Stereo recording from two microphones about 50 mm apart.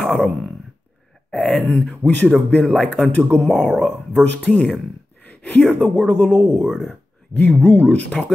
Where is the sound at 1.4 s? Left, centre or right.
Centre.